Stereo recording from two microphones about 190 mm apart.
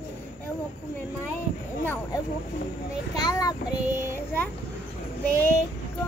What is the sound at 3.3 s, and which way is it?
Child singing, 20° left (ahead or behind).